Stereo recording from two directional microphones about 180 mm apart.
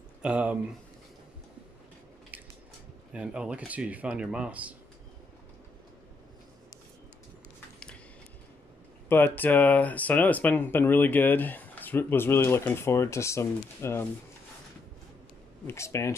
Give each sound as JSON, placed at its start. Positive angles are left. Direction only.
{"t": 0.2, "sound": "speech", "side_deg": -5}
{"t": 3.1, "sound": "speech", "side_deg": -5}
{"t": 9.1, "sound": "speech", "side_deg": 10}
{"t": 15.6, "sound": "speech", "side_deg": 15}